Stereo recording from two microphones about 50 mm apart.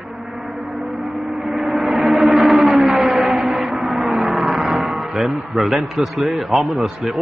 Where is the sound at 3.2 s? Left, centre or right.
Centre.